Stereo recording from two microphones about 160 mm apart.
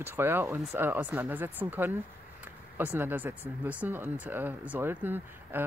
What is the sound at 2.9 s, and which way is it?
Speech, 10° right (ahead or behind).